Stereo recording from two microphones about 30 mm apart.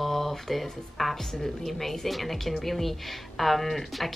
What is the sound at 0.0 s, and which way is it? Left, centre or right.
A woman's voice, centre.